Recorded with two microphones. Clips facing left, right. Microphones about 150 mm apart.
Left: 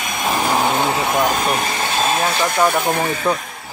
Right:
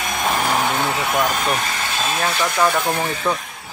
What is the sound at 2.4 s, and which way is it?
Speech, 15° left (ahead or behind).